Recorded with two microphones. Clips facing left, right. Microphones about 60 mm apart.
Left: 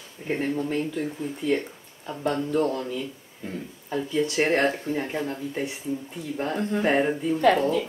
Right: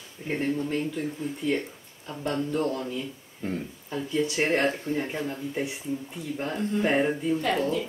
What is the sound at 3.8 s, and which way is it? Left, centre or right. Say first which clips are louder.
Speech: left 3 dB; centre.